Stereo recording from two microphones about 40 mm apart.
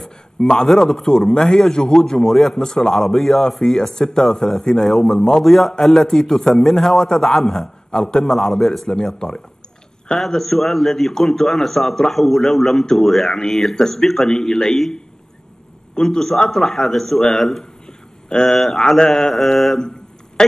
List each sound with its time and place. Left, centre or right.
0.7 s a man's voice: centre
8.3 s a man's voice: centre
13.3 s a man's voice: centre
15.9 s a man's voice: centre
20.4 s a sound: centre